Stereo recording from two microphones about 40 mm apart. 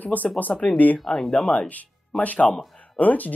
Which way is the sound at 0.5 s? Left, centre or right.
Centre.